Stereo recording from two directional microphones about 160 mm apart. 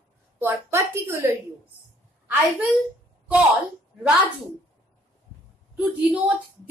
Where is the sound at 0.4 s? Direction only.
15° right (ahead or behind).